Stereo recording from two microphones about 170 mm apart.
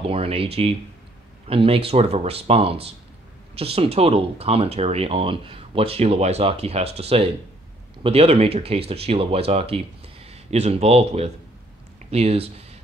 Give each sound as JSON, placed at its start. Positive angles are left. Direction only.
{"t": 0.0, "sound": "speech", "side_deg": -35}